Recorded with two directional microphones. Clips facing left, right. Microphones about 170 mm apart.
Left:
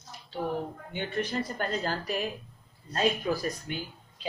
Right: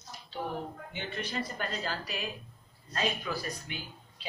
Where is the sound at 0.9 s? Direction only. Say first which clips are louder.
Left 6 dB; 50° left (ahead or behind).